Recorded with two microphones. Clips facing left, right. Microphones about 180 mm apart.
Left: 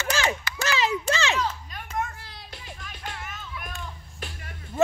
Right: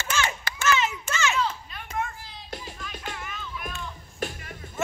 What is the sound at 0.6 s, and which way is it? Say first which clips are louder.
Children playing: right 3 dB; 35° left (ahead or behind).